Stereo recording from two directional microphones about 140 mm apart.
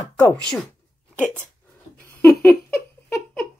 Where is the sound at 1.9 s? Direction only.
5° left (ahead or behind).